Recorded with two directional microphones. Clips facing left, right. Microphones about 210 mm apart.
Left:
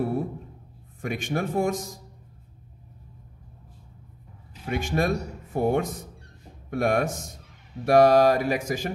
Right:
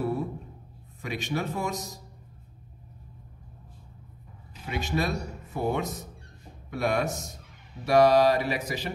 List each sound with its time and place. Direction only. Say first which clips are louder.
1.0 s speech: left 3 dB; 50° left (ahead or behind)
4.6 s speech: left 4 dB; 50° left (ahead or behind)